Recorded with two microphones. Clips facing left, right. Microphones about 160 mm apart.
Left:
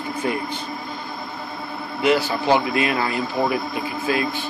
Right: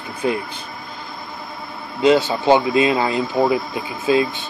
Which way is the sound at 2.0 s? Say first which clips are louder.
Right 4 dB; 25° right (ahead or behind).